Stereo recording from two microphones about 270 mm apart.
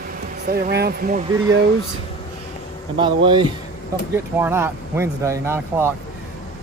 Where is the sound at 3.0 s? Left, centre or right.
Centre.